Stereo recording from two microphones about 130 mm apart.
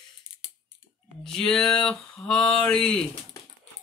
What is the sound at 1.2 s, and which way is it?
Speech, 5° left (ahead or behind).